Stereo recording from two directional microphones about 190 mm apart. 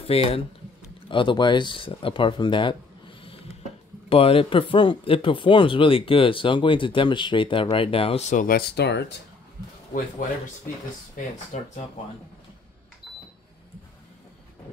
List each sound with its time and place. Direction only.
0.1 s speech: 30° left (ahead or behind); by 9.2 s 60° left (ahead or behind)
11.5 s speech: 40° left (ahead or behind)